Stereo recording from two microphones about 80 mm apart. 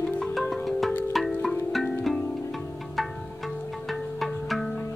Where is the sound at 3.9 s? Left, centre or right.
Centre.